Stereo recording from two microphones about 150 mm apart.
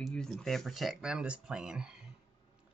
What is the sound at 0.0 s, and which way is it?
Speech, centre (ahead or behind).